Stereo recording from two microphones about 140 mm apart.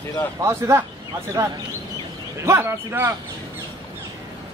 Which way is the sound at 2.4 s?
20° right (ahead or behind).